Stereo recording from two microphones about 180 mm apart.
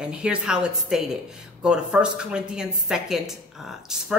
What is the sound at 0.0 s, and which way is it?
A woman's voice, 5° right (ahead or behind).